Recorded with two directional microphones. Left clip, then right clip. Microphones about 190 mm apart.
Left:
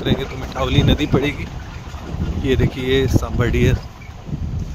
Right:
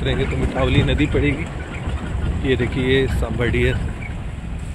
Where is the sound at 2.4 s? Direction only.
15° left (ahead or behind).